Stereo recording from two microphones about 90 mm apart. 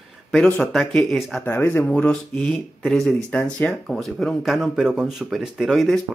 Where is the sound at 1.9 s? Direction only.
10° left (ahead or behind).